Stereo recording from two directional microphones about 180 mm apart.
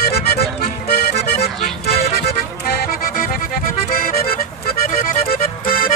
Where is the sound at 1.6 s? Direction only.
35° left (ahead or behind).